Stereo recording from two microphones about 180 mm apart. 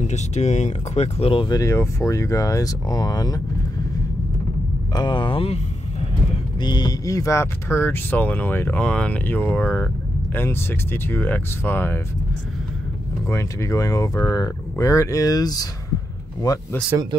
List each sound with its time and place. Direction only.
0.0 s speech: 40° left (ahead or behind); by 3.3 s 20° left (ahead or behind)
4.9 s speech: 25° left (ahead or behind)
6.6 s speech: 25° left (ahead or behind)
13.3 s speech: 15° left (ahead or behind)